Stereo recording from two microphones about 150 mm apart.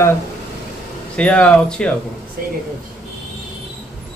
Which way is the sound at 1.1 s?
10° left (ahead or behind).